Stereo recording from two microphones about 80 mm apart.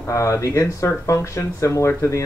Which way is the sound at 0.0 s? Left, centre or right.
Left.